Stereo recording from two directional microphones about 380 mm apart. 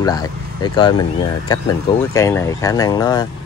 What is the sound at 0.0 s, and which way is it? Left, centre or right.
Speech, centre.